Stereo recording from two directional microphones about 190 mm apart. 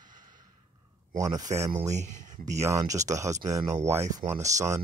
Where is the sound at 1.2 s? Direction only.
20° right (ahead or behind).